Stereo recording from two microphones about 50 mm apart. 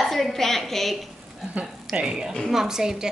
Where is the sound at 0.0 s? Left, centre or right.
Centre.